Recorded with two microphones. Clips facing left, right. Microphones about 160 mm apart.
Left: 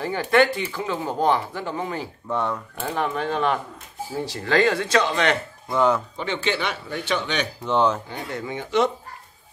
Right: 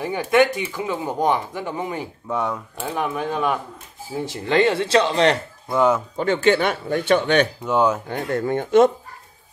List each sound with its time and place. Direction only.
0.0 s speech: 15° right (ahead or behind)
4.2 s speech: 20° right (ahead or behind)
5.7 s speech: 10° right (ahead or behind)
6.1 s speech: 45° right (ahead or behind)
7.6 s speech: 10° right (ahead or behind)
8.1 s speech: 50° right (ahead or behind)